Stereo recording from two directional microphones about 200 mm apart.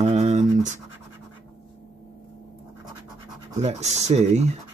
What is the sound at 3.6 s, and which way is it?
Speech, 35° right (ahead or behind).